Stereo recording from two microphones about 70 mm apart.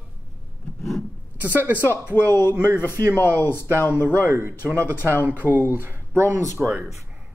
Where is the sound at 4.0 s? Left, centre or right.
Right.